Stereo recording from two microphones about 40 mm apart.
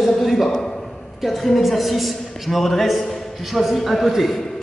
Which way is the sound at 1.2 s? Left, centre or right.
Centre.